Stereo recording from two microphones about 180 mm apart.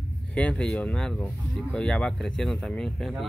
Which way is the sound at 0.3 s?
5° left (ahead or behind).